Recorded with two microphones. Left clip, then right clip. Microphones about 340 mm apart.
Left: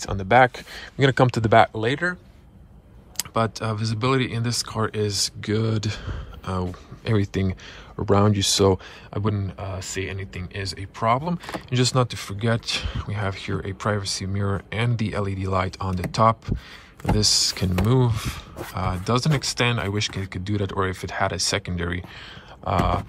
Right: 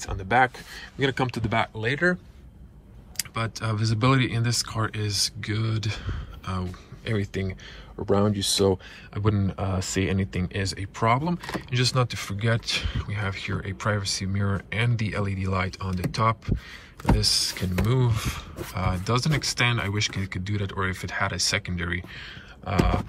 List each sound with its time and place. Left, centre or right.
0.0 s speech: centre
3.2 s speech: centre
8.0 s speech: right
9.1 s speech: centre